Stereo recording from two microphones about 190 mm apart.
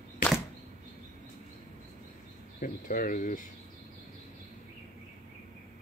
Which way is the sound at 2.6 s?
45° left (ahead or behind).